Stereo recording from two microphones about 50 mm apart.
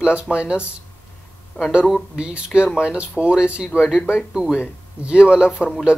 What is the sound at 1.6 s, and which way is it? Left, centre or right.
Speech, left.